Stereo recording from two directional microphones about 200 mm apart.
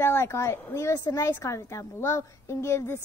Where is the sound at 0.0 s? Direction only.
10° left (ahead or behind).